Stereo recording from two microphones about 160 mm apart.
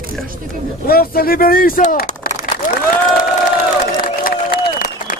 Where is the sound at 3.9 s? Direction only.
65° left (ahead or behind).